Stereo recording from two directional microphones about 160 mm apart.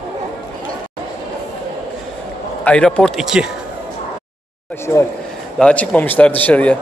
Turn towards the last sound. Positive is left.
turn(degrees=10)  # may be behind; listen again after turning